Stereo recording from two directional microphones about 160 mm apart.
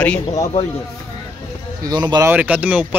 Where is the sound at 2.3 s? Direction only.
10° right (ahead or behind).